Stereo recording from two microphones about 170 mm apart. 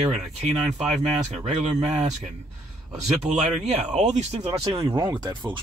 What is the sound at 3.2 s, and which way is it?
Speech, 40° right (ahead or behind).